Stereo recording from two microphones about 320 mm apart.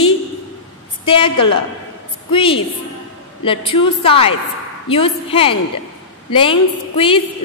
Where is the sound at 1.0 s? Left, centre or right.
Centre.